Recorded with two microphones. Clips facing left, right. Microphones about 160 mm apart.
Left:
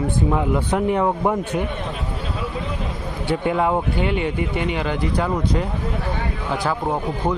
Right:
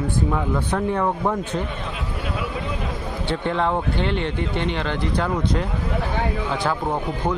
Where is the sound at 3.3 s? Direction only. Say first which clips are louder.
Left 3 dB; 10° left (ahead or behind).